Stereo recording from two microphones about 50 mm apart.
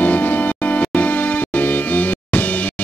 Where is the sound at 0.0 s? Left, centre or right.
Left.